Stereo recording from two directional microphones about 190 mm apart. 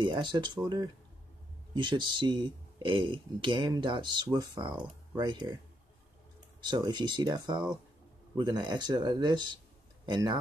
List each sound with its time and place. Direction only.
0.0 s speech: 25° right (ahead or behind)
1.7 s speech: 25° right (ahead or behind)
6.6 s speech: 25° right (ahead or behind)